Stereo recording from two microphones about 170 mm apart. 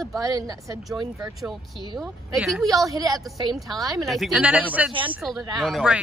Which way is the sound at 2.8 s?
20° right (ahead or behind).